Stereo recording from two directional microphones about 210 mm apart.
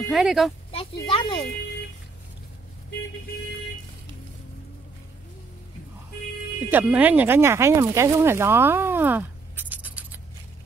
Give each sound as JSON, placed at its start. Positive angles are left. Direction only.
{"t": 0.1, "sound": "speech", "side_deg": 0}
{"t": 0.7, "sound": "speech", "side_deg": 25}
{"t": 6.7, "sound": "speech", "side_deg": -10}